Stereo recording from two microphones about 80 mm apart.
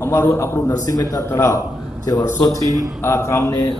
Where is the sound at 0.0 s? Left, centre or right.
Left.